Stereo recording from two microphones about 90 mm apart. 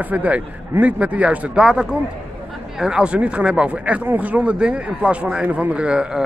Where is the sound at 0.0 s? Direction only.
20° right (ahead or behind).